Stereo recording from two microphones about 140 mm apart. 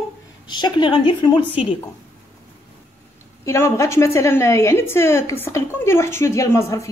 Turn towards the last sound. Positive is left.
turn(degrees=20)  # may be behind; listen again after turning